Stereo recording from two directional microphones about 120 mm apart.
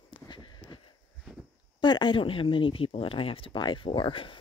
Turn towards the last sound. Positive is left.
turn(degrees=45)  # may be behind; listen again after turning